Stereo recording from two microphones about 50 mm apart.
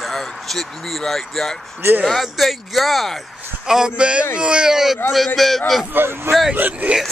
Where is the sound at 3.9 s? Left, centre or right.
Right.